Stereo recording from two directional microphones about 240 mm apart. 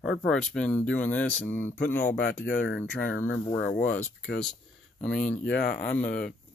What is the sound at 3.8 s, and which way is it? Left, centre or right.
Speech, centre.